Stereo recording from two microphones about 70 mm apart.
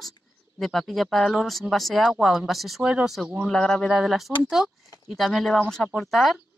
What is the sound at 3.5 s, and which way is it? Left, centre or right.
Speech, centre.